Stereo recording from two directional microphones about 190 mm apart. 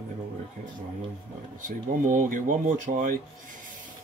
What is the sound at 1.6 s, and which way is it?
Speech, 45° right (ahead or behind).